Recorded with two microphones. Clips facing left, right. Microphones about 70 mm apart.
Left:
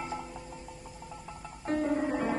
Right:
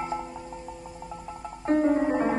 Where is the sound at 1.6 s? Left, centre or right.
Right.